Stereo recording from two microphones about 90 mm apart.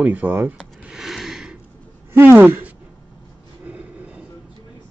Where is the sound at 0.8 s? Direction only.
5° right (ahead or behind).